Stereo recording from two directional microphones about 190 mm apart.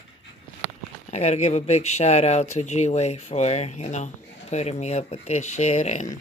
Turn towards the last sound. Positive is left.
turn(degrees=35)  # may be behind; listen again after turning